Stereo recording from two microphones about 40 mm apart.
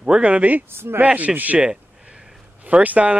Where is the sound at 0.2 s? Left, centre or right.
Right.